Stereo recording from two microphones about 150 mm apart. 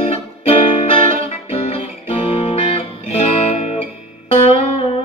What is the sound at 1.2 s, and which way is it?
Music, 40° left (ahead or behind).